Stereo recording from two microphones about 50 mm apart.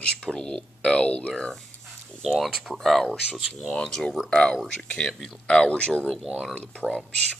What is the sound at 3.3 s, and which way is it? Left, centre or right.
Speech, right.